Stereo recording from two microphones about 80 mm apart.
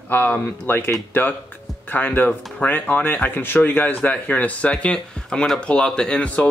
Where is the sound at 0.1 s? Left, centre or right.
Left.